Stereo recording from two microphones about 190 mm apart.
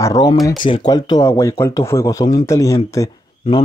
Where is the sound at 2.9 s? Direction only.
15° left (ahead or behind).